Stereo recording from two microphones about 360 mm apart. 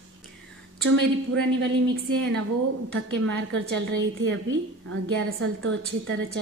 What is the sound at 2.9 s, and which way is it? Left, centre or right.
A woman's voice, right.